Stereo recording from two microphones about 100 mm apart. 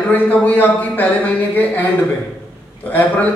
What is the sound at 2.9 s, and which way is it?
Speech, 15° left (ahead or behind).